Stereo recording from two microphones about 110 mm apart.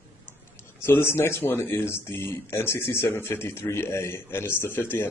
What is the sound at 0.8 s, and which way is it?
A man's voice, 20° left (ahead or behind).